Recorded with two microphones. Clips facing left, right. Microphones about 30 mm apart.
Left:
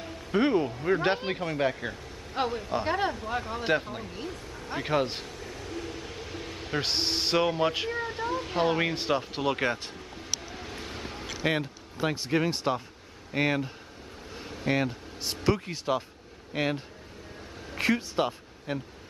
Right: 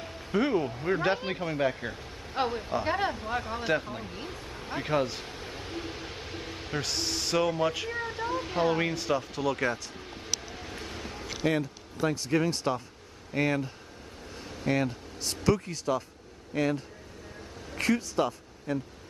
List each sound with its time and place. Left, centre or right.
0.4 s speech: centre
0.7 s speech: centre
4.6 s speech: centre
5.4 s a sound: right; by 6.8 s centre
6.8 s speech: left
7.9 s a sound: centre
8.5 s speech: centre
8.9 s speech: left
10.5 s vehicle: centre
11.4 s speech: left
17.6 s a sound: centre
18.1 s speech: left